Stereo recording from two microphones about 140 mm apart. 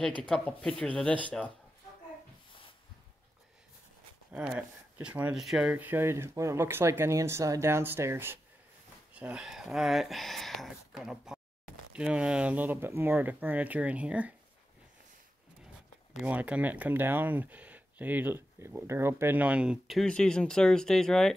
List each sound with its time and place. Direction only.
0.2 s speech: 5° left (ahead or behind)
4.3 s speech: 10° right (ahead or behind)
16.3 s speech: 10° right (ahead or behind)